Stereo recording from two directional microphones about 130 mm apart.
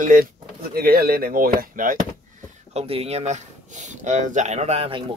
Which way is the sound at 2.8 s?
50° right (ahead or behind).